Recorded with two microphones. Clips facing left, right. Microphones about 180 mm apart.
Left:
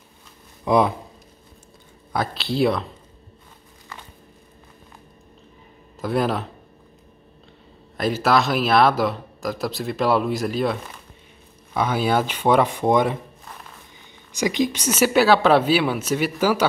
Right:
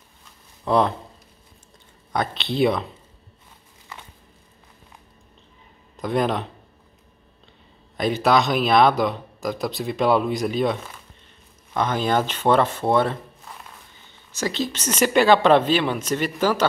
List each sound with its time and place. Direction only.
0.7 s a woman's voice: 10° left (ahead or behind)
2.1 s a man's voice: centre (ahead or behind)
5.9 s a man's voice: 5° left (ahead or behind)
8.0 s a man's voice: centre (ahead or behind)
14.3 s a woman's voice: 15° left (ahead or behind)